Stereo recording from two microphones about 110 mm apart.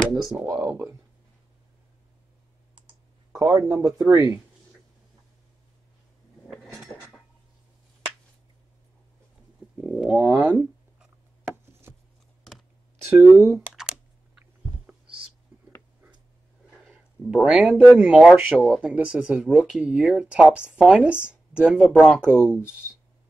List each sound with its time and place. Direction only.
0.1 s speech: centre (ahead or behind)
0.6 s speech: 20° right (ahead or behind)
3.3 s speech: 30° right (ahead or behind)
6.5 s a sound: centre (ahead or behind)
9.8 s speech: 10° right (ahead or behind)
13.0 s speech: 25° right (ahead or behind)
13.7 s computer keyboard: 5° right (ahead or behind)
17.3 s speech: 5° right (ahead or behind)